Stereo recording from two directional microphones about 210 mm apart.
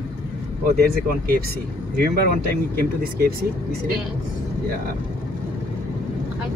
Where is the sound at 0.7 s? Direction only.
45° right (ahead or behind).